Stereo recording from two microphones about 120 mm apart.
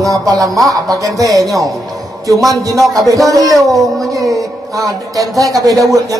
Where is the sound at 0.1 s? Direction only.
30° right (ahead or behind).